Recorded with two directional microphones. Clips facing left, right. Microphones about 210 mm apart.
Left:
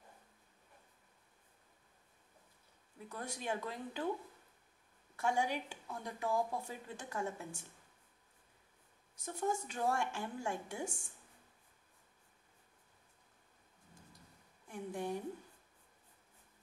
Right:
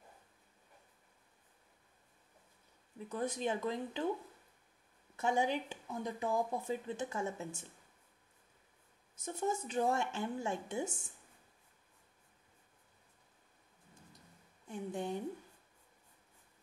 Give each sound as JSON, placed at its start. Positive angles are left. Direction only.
{"t": 3.1, "sound": "speech", "side_deg": -20}
{"t": 5.1, "sound": "speech", "side_deg": -20}
{"t": 9.2, "sound": "speech", "side_deg": -20}
{"t": 14.7, "sound": "speech", "side_deg": -25}